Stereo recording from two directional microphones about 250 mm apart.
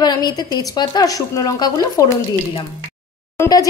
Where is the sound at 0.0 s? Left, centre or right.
Centre.